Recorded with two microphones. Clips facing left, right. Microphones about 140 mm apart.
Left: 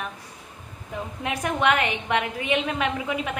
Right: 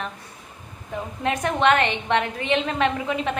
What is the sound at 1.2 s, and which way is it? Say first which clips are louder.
A woman's voice: right 3 dB; 10° left (ahead or behind).